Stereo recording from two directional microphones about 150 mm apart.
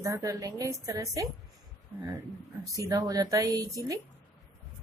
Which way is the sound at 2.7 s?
25° right (ahead or behind).